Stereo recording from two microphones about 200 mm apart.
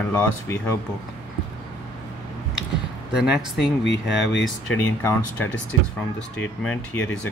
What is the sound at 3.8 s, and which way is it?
Speech, 60° left (ahead or behind).